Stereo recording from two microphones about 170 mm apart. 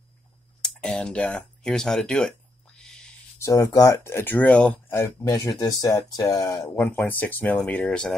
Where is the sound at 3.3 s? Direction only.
20° left (ahead or behind).